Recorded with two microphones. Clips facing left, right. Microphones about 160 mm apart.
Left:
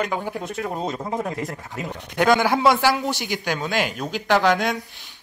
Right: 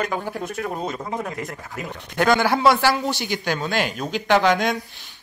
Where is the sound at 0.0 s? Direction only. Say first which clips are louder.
Even; 15° left (ahead or behind).